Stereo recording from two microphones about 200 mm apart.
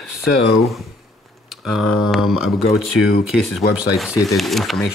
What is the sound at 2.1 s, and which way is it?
Speech, centre (ahead or behind).